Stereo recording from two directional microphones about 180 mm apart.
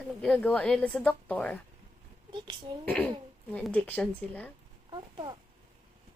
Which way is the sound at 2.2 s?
25° right (ahead or behind).